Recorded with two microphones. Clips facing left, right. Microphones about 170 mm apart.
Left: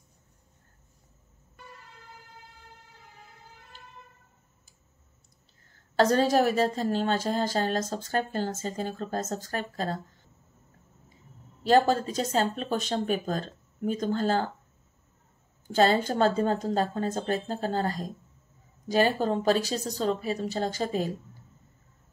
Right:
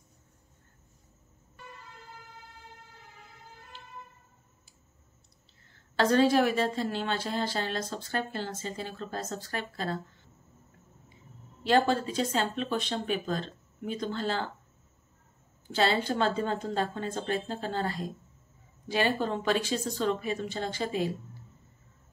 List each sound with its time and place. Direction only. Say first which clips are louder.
5.7 s a woman's voice: left 3 dB; 40° left (ahead or behind)
11.6 s a woman's voice: left 3 dB; 40° left (ahead or behind)
15.7 s a woman's voice: left 4 dB; 45° left (ahead or behind)